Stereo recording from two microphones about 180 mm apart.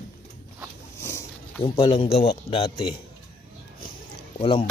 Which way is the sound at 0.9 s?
15° left (ahead or behind).